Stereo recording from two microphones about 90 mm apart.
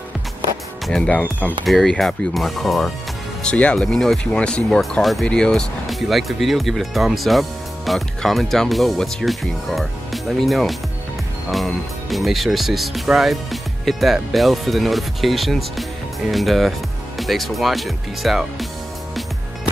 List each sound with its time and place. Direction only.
0.8 s speech: 10° left (ahead or behind)
1.7 s speech: centre (ahead or behind)
3.4 s speech: 10° left (ahead or behind)